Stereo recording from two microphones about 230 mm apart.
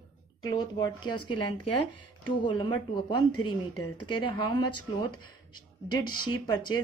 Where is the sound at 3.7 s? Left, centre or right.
Left.